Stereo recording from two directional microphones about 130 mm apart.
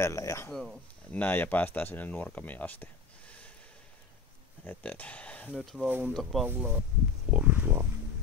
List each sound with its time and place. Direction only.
0.0 s speech: 25° left (ahead or behind)
0.5 s speech: 5° left (ahead or behind)
1.2 s speech: 15° left (ahead or behind)
4.6 s speech: 10° left (ahead or behind)
5.9 s speech: 15° right (ahead or behind)
7.2 s wild animals: 10° right (ahead or behind)